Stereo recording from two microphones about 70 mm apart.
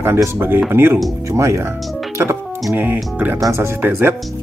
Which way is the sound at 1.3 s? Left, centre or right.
Right.